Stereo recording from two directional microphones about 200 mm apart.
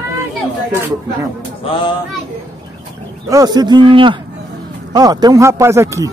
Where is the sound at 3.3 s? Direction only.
20° right (ahead or behind).